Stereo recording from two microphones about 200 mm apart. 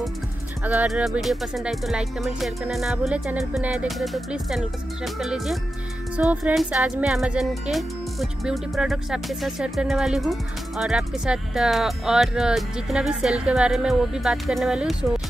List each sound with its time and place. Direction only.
0.7 s speech: 5° right (ahead or behind)